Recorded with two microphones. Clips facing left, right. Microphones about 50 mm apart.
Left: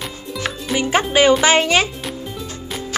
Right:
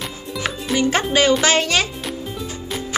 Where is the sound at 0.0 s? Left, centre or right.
Centre.